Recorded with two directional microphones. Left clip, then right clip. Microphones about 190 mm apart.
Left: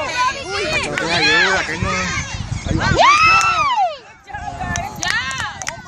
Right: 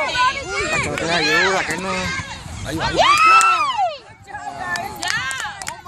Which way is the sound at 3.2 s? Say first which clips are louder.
Right 1 dB; 40° left (ahead or behind).